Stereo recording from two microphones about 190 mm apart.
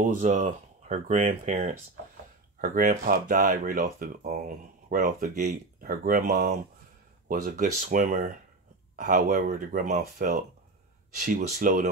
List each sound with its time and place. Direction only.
0.0 s speech: 40° right (ahead or behind)
11.2 s speech: 45° right (ahead or behind)